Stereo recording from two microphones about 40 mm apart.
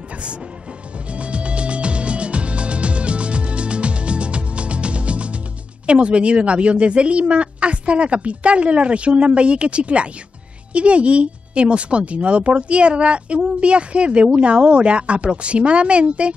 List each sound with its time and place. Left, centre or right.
1.1 s music: right
5.9 s speech: right